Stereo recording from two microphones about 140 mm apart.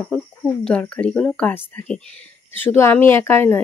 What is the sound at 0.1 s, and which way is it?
Speech, 5° left (ahead or behind).